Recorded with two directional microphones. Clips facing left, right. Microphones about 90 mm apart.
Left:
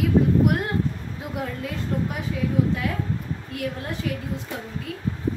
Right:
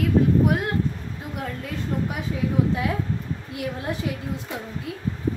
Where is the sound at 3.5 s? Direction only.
15° right (ahead or behind).